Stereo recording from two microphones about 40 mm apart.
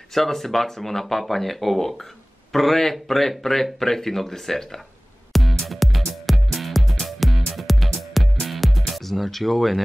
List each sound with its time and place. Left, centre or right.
0.1 s speech: centre
5.3 s music: centre